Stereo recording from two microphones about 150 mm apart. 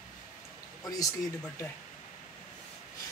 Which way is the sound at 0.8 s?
25° left (ahead or behind).